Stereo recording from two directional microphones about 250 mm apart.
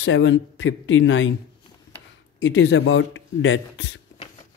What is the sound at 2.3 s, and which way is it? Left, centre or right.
Speech, left.